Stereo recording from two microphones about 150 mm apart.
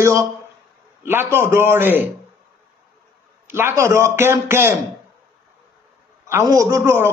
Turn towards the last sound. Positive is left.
turn(degrees=-15)  # may be behind; listen again after turning